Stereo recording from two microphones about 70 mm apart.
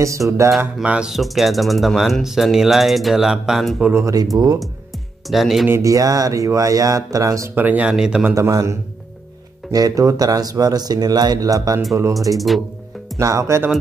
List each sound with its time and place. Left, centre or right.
0.0 s speech: right
0.8 s speech: centre
1.1 s speech: centre
4.0 s speech: right
5.3 s speech: centre
5.8 s speech: right
7.5 s speech: right
7.8 s speech: centre
8.4 s speech: right
12.4 s speech: centre
13.2 s speech: right